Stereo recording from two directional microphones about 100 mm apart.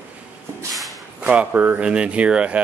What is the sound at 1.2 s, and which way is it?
Speech, 15° right (ahead or behind).